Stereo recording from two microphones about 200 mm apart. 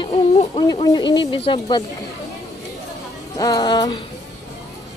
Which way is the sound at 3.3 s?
20° left (ahead or behind).